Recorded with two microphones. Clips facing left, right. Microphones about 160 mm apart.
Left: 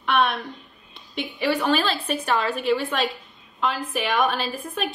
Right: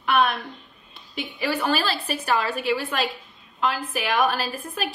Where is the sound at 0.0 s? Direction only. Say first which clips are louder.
Even; 5° right (ahead or behind).